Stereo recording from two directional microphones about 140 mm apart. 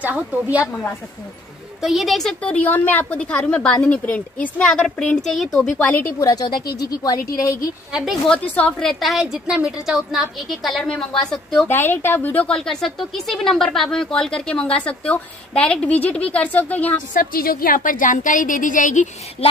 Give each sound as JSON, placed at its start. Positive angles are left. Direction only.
{"t": 0.0, "sound": "a woman's voice", "side_deg": -10}
{"t": 1.8, "sound": "speech", "side_deg": 0}
{"t": 5.8, "sound": "speech", "side_deg": 15}
{"t": 6.2, "sound": "speech", "side_deg": 30}
{"t": 7.9, "sound": "a woman's voice", "side_deg": 0}
{"t": 11.6, "sound": "speech", "side_deg": 15}
{"t": 17.1, "sound": "a woman's voice", "side_deg": 85}